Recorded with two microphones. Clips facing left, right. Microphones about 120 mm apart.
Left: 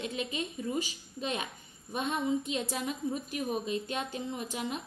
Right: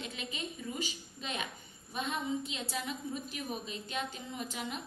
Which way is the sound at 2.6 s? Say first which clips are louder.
Left 5 dB; 40° left (ahead or behind).